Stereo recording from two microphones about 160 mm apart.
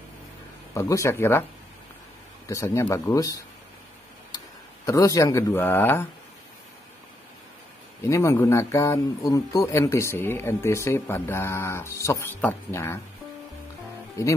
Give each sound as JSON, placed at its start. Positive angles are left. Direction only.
{"t": 0.7, "sound": "speech", "side_deg": 20}
{"t": 2.4, "sound": "speech", "side_deg": 15}
{"t": 4.8, "sound": "speech", "side_deg": 20}
{"t": 8.0, "sound": "speech", "side_deg": 15}